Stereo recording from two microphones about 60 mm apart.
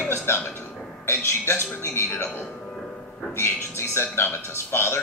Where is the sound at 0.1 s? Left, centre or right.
Left.